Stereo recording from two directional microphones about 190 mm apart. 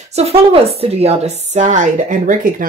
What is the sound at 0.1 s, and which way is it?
Speech, 30° right (ahead or behind).